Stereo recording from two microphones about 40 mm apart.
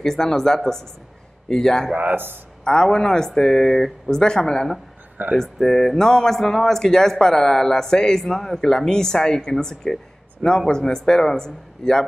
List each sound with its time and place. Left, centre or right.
0.0 s speech: centre
2.0 s speech: right
2.6 s speech: centre